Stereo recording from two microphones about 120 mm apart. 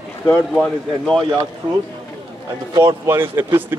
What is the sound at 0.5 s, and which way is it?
Speech, 5° left (ahead or behind).